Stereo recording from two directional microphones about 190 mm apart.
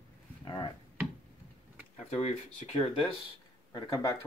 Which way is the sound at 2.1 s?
35° left (ahead or behind).